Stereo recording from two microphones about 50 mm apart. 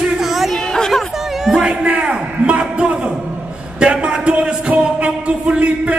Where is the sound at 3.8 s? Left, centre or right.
Right.